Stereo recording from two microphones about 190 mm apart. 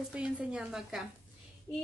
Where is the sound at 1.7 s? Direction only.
10° left (ahead or behind).